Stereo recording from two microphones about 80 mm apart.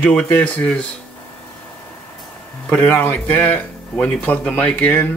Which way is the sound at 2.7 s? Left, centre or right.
Left.